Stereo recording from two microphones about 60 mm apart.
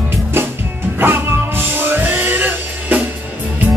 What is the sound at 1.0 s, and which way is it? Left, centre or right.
Music, right.